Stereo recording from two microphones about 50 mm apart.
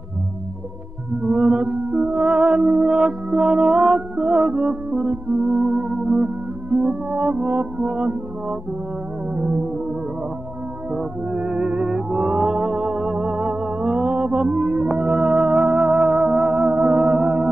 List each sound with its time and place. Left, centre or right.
1.2 s music: right
11.3 s music: right